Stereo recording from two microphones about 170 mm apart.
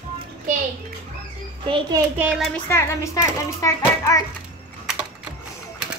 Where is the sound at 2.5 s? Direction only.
15° left (ahead or behind).